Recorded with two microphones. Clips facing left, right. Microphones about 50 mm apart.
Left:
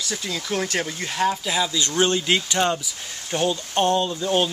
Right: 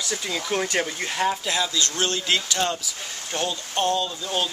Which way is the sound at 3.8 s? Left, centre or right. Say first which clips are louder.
Left 3 dB; left.